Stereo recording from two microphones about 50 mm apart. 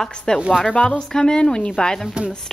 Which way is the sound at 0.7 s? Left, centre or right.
Left.